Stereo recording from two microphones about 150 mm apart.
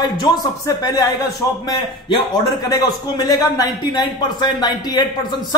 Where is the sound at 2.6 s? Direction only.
25° left (ahead or behind).